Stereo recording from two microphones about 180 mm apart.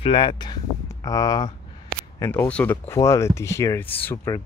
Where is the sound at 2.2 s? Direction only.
10° left (ahead or behind).